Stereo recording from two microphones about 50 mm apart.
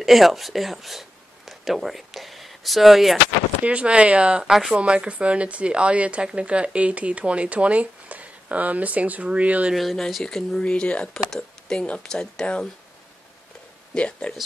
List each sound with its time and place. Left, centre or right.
0.0 s speech: centre
3.6 s speech: right
4.5 s speech: centre
4.7 s speech: right
9.8 s speech: centre
10.6 s speech: left
11.1 s speech: centre
11.8 s speech: left
13.9 s speech: left